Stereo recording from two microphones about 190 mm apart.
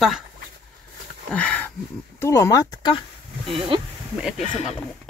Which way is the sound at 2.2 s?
15° left (ahead or behind).